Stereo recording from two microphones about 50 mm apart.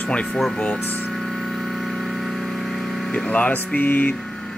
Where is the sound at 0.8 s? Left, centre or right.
Left.